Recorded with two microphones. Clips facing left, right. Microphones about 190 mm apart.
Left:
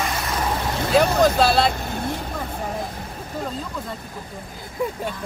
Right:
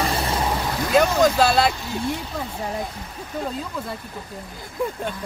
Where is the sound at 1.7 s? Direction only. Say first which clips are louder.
Left 1 dB; 55° left (ahead or behind).